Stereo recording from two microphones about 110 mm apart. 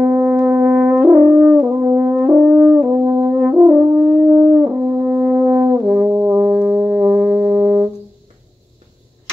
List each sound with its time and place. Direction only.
0.0 s french horn: 5° right (ahead or behind)
4.3 s brass instrument: 15° right (ahead or behind)